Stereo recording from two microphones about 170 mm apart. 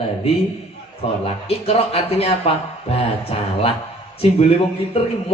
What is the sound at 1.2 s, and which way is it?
Speech, 35° left (ahead or behind).